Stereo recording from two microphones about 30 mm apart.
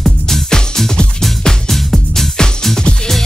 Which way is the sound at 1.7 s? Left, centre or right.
Centre.